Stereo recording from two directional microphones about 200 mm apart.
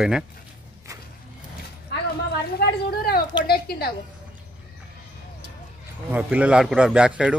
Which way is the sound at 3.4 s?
50° left (ahead or behind).